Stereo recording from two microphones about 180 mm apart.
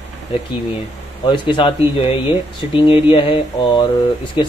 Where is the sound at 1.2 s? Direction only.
25° left (ahead or behind).